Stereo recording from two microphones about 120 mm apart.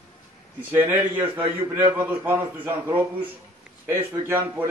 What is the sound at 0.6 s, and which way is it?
A man's voice, 15° right (ahead or behind).